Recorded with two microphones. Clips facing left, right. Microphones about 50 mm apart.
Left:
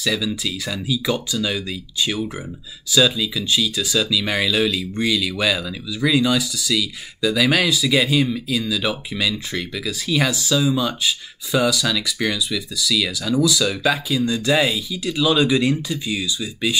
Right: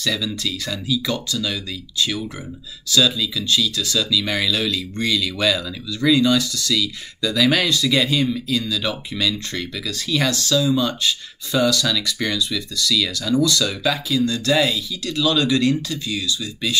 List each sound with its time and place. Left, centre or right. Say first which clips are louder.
0.0 s speech: left 1 dB; centre